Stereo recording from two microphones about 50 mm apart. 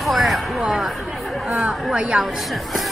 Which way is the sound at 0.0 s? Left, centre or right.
Centre.